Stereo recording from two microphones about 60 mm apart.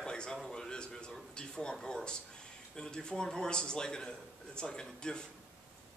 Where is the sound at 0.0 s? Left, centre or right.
Centre.